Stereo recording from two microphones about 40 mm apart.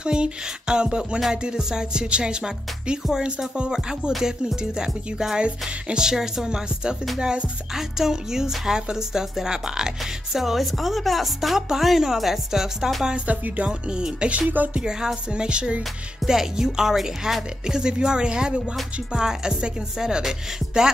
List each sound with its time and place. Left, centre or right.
0.0 s music: right
6.0 s speech: centre
7.2 s music: right
7.7 s speech: centre
13.7 s music: right
14.5 s speech: right
14.8 s speech: centre
15.3 s music: right
16.3 s speech: centre